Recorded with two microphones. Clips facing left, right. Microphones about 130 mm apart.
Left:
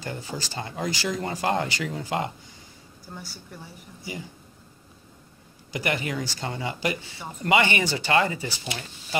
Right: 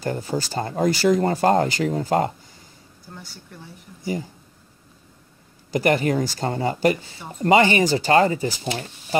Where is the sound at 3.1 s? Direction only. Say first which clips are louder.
Left 1 dB; 5° left (ahead or behind).